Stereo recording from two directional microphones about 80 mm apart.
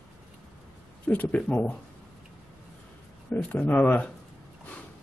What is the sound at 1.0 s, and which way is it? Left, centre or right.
Speech, centre.